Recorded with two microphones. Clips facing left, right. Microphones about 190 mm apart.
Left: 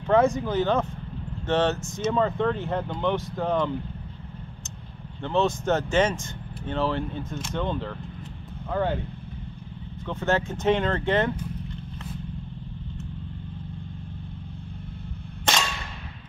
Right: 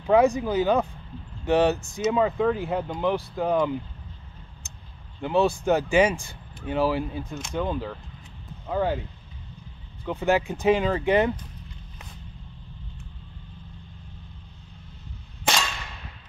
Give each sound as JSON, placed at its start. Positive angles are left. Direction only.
{"t": 0.0, "sound": "speech", "side_deg": -15}
{"t": 5.2, "sound": "speech", "side_deg": -10}
{"t": 10.0, "sound": "speech", "side_deg": -15}
{"t": 10.6, "sound": "speech", "side_deg": -5}